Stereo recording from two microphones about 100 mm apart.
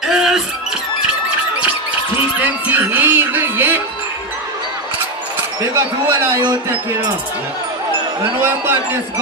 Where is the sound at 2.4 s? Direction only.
15° right (ahead or behind).